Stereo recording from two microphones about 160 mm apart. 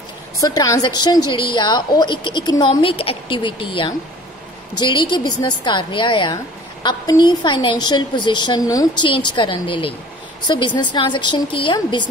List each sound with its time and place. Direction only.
0.4 s a woman's voice: 20° left (ahead or behind)